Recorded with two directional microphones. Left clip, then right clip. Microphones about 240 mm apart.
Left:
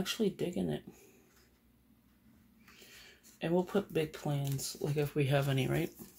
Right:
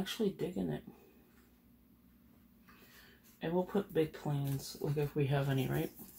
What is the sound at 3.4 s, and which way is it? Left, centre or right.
Speech, left.